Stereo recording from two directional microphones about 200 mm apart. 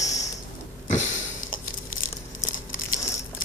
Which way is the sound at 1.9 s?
40° left (ahead or behind).